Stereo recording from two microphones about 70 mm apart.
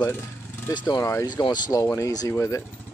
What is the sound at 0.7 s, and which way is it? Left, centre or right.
Speech, left.